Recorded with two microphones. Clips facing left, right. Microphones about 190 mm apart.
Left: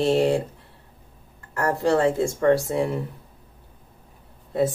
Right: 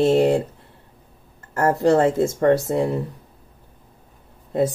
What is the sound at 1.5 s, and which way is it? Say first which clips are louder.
Speech: right 4 dB; 40° right (ahead or behind).